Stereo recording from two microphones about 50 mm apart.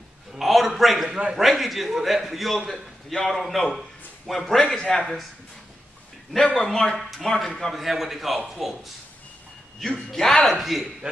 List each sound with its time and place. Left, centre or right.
0.4 s a man's voice: centre
1.1 s a man's voice: centre
1.4 s a man's voice: centre
6.6 s speech: centre
7.0 s a man's voice: centre
9.8 s a man's voice: centre